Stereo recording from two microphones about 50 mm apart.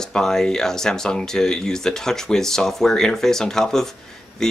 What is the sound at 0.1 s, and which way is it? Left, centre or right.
Speech, centre.